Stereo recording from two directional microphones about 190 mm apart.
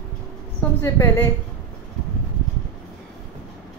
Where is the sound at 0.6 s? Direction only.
15° left (ahead or behind).